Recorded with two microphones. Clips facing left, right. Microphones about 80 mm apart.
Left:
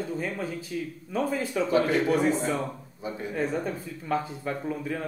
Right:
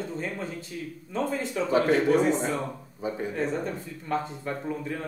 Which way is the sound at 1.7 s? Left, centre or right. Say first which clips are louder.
Right 2 dB; right.